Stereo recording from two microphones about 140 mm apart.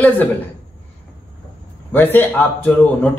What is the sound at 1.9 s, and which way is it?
Speech, 15° left (ahead or behind).